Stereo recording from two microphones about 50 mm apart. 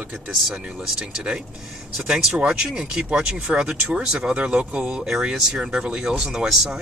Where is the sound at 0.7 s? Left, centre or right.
Centre.